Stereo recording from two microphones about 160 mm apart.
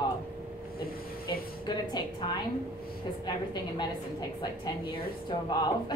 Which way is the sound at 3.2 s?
25° left (ahead or behind).